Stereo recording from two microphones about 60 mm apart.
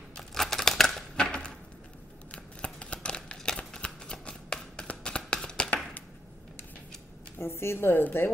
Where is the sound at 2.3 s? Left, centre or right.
Centre.